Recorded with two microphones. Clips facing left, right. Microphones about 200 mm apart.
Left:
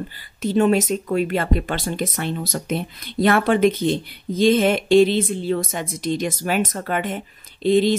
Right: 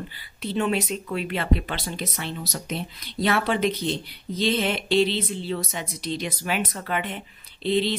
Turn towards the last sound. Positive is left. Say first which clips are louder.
# left 7 dB
turn(degrees=45)  # may be behind; listen again after turning